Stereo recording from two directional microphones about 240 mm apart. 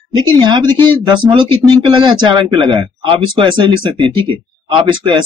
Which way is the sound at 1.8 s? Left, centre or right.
Centre.